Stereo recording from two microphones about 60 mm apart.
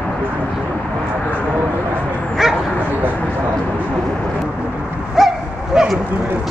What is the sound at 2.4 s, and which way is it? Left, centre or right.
Bow-wow, centre.